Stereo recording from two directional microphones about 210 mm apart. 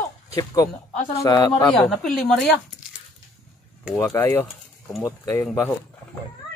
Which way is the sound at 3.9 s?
10° left (ahead or behind).